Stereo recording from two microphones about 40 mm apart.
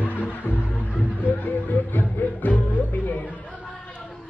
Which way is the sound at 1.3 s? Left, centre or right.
Left.